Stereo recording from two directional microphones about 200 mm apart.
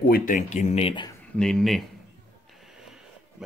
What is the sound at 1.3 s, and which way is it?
Speech, 5° left (ahead or behind).